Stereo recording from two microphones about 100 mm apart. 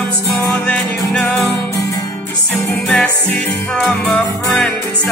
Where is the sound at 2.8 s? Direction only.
15° left (ahead or behind).